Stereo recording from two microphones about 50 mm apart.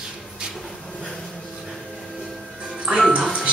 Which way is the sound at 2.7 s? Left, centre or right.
Right.